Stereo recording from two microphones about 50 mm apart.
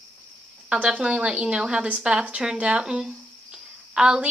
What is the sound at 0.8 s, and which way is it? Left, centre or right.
A woman's voice, right.